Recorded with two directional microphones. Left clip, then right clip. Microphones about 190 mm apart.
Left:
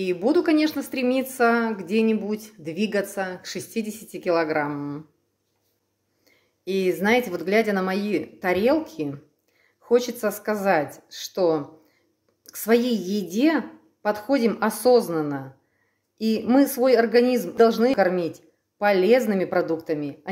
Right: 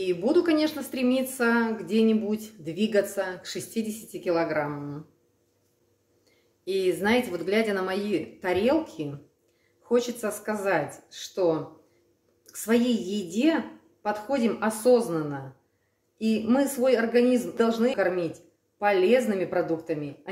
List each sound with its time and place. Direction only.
0.0 s a woman's voice: 35° left (ahead or behind)
6.6 s a woman's voice: 35° left (ahead or behind)